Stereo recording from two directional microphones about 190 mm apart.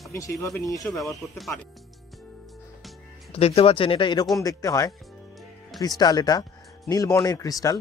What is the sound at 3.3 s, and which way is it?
Speech, 30° left (ahead or behind).